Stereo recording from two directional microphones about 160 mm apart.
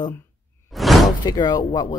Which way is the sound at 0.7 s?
Centre (ahead or behind).